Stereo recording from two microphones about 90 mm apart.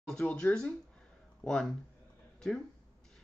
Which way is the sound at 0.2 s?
15° left (ahead or behind).